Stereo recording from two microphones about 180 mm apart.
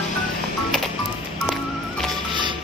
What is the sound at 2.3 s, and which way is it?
Music, 25° right (ahead or behind).